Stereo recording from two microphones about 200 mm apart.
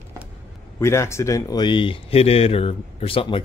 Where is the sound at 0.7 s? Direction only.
15° left (ahead or behind).